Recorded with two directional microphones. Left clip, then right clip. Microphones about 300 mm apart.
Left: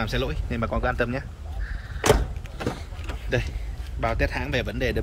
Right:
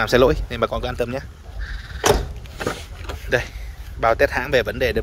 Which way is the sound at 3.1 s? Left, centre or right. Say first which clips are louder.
Right 7 dB; centre.